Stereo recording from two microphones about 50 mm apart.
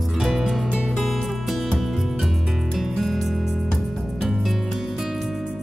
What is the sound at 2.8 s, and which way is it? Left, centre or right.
Music, centre.